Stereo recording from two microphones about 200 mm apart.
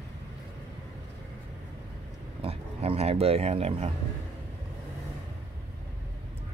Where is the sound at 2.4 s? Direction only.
30° right (ahead or behind).